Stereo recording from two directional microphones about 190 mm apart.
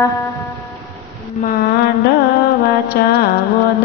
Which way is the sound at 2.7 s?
55° left (ahead or behind).